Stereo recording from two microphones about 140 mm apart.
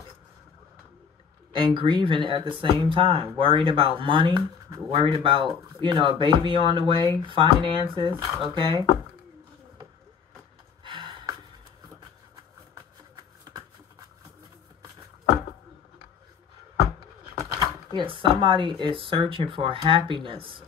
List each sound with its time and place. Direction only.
1.5 s speech: 40° right (ahead or behind)
10.8 s a sound: 35° right (ahead or behind)
17.6 s speech: 35° right (ahead or behind)